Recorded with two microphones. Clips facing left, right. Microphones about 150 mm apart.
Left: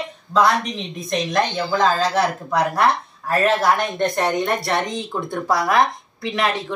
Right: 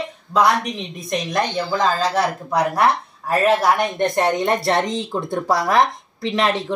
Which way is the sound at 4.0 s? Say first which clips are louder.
Right 2 dB; 25° right (ahead or behind).